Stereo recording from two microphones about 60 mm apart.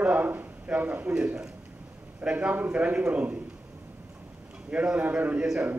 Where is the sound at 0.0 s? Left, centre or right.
Right.